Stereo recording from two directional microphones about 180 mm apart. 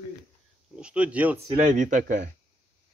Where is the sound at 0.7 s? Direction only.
5° right (ahead or behind).